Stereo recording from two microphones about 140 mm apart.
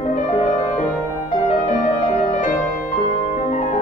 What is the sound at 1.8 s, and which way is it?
Music, 65° left (ahead or behind).